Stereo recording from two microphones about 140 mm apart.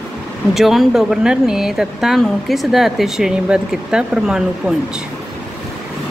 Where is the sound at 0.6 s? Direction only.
Centre (ahead or behind).